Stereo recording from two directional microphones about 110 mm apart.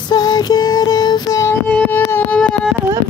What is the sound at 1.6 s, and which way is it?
Music, 15° left (ahead or behind).